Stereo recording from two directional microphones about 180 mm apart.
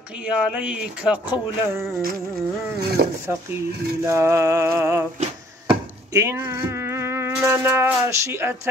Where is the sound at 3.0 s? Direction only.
55° right (ahead or behind).